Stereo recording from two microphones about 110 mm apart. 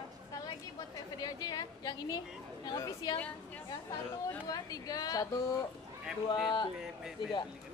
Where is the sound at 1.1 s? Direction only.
35° left (ahead or behind).